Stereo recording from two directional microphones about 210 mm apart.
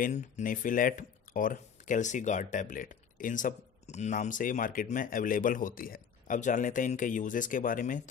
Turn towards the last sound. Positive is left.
turn(degrees=40)  # may be behind; listen again after turning